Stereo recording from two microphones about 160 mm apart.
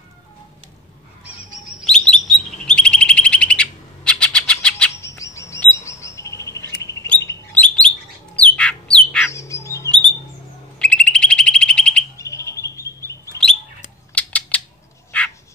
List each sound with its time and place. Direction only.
1.2 s bird: 10° right (ahead or behind)
1.9 s bird: 5° left (ahead or behind)
5.0 s chirp: 20° left (ahead or behind)
6.8 s bird: 20° left (ahead or behind)
7.2 s bird: 10° left (ahead or behind)
9.3 s bird: 20° left (ahead or behind)
10.8 s bird: 5° left (ahead or behind)
12.2 s bird: 20° left (ahead or behind)
14.1 s a sound: 10° left (ahead or behind)